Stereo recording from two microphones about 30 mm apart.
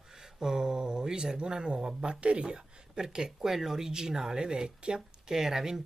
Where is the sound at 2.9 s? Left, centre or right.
Right.